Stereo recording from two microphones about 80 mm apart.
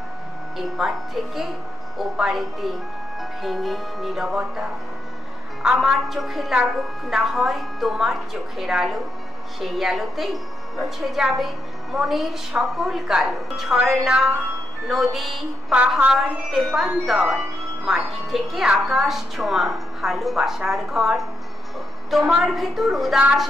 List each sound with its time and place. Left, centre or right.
0.6 s a woman's voice: centre
22.3 s a woman's voice: centre